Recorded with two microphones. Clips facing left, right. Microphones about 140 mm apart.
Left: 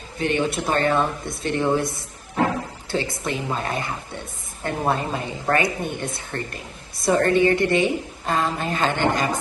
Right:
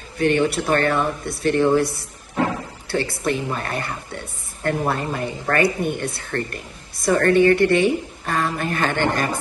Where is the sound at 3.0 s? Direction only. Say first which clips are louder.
Right 3 dB; 20° left (ahead or behind).